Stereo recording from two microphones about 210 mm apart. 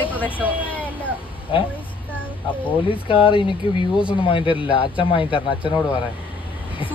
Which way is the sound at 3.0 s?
25° left (ahead or behind).